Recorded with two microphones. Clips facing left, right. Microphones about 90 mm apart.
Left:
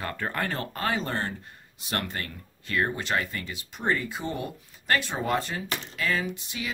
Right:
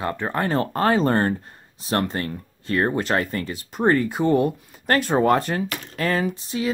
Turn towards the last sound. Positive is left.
turn(degrees=-35)  # may be behind; listen again after turning